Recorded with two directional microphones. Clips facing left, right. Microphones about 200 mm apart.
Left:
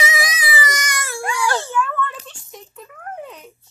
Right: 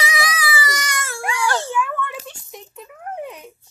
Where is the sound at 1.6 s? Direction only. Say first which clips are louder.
Left 1 dB; 15° right (ahead or behind).